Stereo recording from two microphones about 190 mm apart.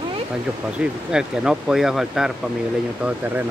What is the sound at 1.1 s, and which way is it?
Speech, 5° right (ahead or behind).